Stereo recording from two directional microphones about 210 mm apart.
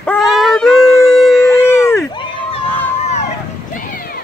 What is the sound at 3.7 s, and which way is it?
Music, 40° left (ahead or behind).